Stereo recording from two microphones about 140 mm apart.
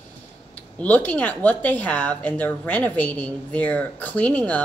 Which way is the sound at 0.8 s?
10° left (ahead or behind).